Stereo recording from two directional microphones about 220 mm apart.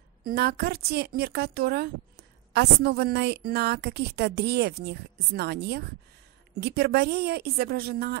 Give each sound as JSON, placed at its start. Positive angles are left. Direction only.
{"t": 0.2, "sound": "a woman's voice", "side_deg": -45}